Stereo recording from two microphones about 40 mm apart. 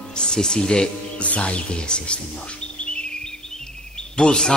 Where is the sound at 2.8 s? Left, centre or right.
Left.